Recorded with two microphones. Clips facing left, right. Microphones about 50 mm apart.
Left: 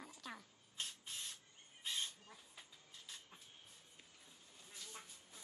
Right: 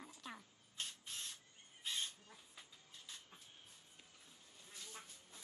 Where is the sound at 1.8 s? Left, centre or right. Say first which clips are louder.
Even; centre.